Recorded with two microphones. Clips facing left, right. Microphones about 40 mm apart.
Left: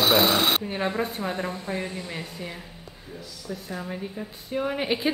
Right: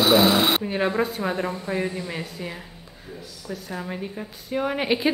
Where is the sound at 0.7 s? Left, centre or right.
Centre.